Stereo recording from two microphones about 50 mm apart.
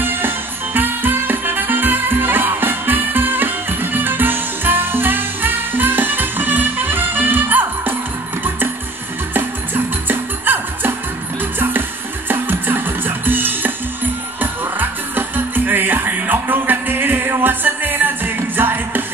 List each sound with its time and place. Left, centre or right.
0.0 s music: right
10.0 s music: right
12.3 s music: right